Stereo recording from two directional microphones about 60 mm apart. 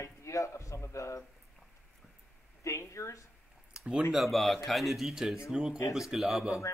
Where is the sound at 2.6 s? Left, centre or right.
Left.